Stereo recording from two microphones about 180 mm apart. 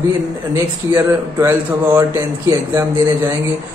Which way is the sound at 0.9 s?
15° right (ahead or behind).